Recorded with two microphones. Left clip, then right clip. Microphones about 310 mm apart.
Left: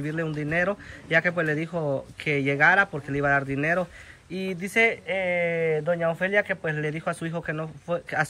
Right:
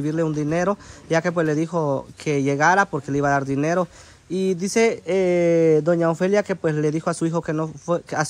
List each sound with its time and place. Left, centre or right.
0.0 s a man's voice: centre
5.4 s speech: right
6.0 s a man's voice: centre
6.7 s speech: right
7.0 s a man's voice: centre